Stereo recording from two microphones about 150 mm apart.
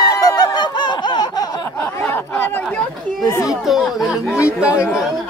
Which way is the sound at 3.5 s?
Centre (ahead or behind).